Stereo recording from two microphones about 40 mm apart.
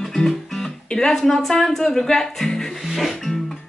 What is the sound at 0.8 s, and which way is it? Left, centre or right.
Speech, centre.